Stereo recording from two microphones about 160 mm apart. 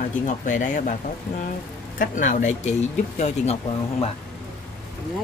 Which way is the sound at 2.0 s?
50° left (ahead or behind).